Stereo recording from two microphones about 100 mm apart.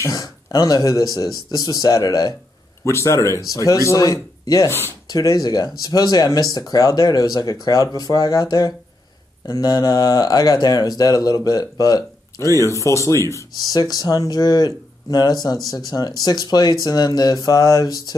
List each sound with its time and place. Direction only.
0.0 s speech: 35° left (ahead or behind)
2.8 s speech: 30° left (ahead or behind)
4.6 s speech: 20° left (ahead or behind)
5.0 s speech: 40° left (ahead or behind)
13.6 s speech: 40° left (ahead or behind)